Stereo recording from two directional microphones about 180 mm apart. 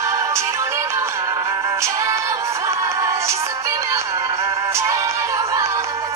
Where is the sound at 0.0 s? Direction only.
15° right (ahead or behind).